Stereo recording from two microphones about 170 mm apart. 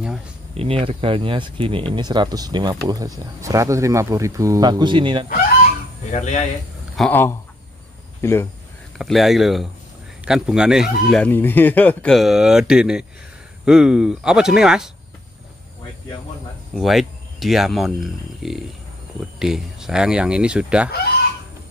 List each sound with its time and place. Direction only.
0.6 s speech: 30° right (ahead or behind)
6.1 s speech: 45° left (ahead or behind)
7.0 s speech: 10° left (ahead or behind)
8.9 s speech: centre (ahead or behind)
16.7 s speech: centre (ahead or behind)